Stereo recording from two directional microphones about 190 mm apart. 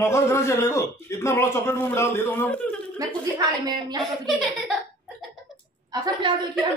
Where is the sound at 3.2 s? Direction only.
20° right (ahead or behind).